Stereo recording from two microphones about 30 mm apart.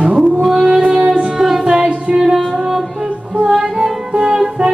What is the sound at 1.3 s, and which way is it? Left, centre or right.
Music, right.